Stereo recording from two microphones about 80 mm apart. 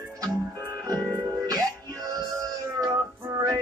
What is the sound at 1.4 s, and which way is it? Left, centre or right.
Music, right.